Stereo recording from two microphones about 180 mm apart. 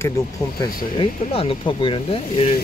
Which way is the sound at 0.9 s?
30° left (ahead or behind).